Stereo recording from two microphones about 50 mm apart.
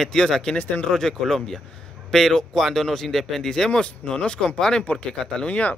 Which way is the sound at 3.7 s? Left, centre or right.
Left.